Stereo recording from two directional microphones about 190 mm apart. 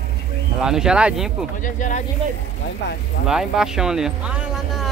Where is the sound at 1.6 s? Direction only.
40° left (ahead or behind).